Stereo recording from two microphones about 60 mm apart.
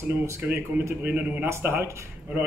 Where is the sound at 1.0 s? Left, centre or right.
Right.